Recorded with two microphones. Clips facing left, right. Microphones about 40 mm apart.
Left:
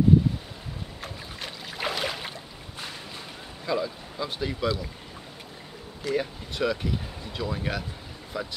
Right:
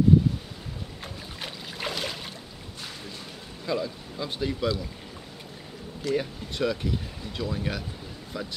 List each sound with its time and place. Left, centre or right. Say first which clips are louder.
1.0 s boat: left 1 dB; centre
3.6 s speech: left 1 dB; centre
6.0 s speech: even; centre